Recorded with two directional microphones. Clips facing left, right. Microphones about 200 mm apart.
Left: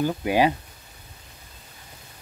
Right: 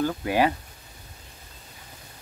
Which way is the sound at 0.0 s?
15° left (ahead or behind).